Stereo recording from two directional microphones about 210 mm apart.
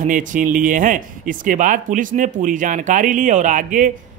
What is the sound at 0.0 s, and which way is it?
Speech, 40° right (ahead or behind).